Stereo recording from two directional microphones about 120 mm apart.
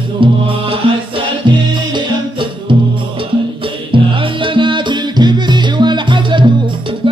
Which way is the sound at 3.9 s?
45° right (ahead or behind).